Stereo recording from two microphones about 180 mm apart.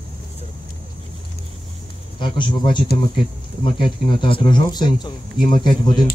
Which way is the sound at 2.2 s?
25° left (ahead or behind).